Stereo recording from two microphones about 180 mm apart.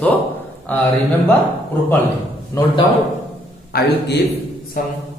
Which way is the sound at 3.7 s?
60° left (ahead or behind).